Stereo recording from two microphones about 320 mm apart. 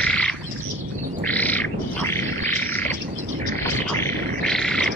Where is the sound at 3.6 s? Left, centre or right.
Centre.